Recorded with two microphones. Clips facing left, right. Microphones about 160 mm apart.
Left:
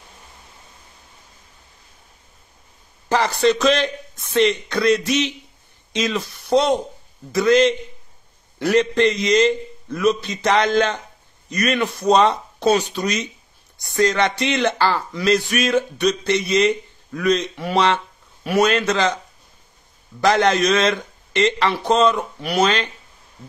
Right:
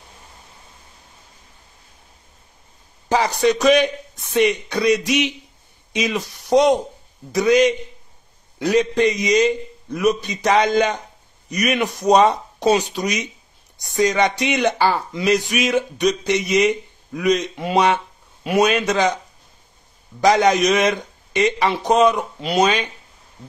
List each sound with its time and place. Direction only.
3.1 s speech: 15° right (ahead or behind)
20.2 s speech: 15° right (ahead or behind)